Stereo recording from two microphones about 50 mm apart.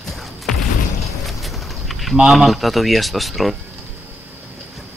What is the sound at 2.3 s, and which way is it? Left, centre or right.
Speech, centre.